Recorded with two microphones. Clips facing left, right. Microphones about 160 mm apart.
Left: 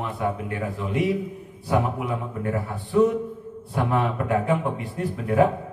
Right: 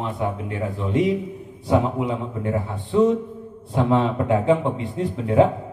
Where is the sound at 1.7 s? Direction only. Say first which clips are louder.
Right 4 dB; 25° right (ahead or behind).